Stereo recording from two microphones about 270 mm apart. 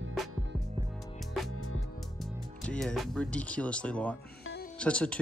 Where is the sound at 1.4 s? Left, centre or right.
Centre.